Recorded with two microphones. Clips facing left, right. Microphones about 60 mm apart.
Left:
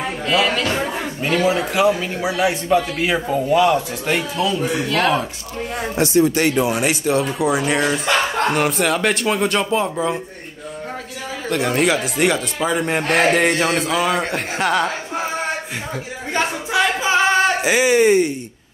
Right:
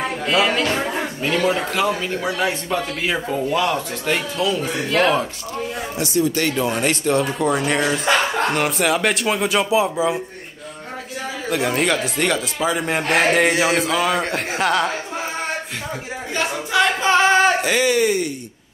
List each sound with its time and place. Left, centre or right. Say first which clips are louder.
0.3 s speech: even; centre
1.2 s a man's voice: left 2 dB; centre
5.9 s speech: left 5 dB; left
6.3 s a man's voice: left 3 dB; centre
11.4 s a man's voice: left 2 dB; centre
16.7 s singing: right 1 dB; centre
17.6 s speech: left 2 dB; centre
17.9 s speech: left 5 dB; left